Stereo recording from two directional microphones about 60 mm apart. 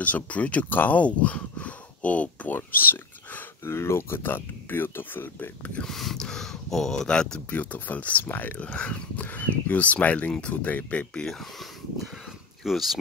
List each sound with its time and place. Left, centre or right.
0.0 s speech: left
3.6 s speech: left
5.9 s speech: centre
7.5 s speech: left
11.1 s speech: centre
12.6 s speech: centre